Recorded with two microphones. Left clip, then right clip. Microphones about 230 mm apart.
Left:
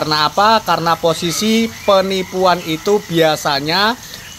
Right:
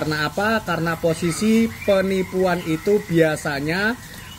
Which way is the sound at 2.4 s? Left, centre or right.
Left.